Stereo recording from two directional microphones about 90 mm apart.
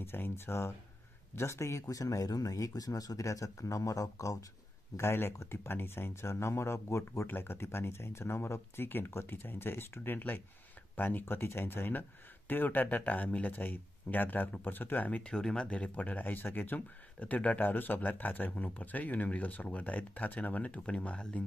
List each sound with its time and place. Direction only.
0.0 s speech: 25° left (ahead or behind)
4.9 s speech: 30° left (ahead or behind); by 21.5 s 15° left (ahead or behind)